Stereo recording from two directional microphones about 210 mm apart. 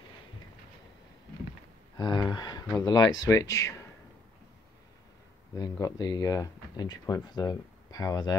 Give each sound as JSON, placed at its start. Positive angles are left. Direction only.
{"t": 2.0, "sound": "speech", "side_deg": 20}
{"t": 5.6, "sound": "speech", "side_deg": 20}